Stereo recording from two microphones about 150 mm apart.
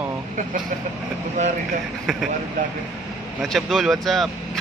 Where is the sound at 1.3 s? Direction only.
55° right (ahead or behind).